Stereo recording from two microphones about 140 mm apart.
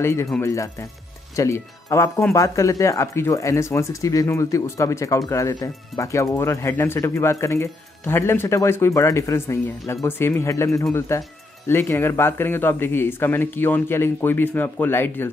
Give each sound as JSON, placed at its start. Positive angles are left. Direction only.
{"t": 0.0, "sound": "speech", "side_deg": 20}